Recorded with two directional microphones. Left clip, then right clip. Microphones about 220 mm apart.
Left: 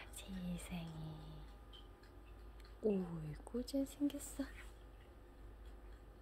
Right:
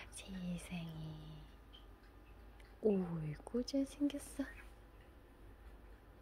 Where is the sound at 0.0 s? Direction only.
10° right (ahead or behind).